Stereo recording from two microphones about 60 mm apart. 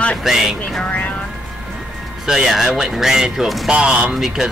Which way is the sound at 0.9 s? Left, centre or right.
Left.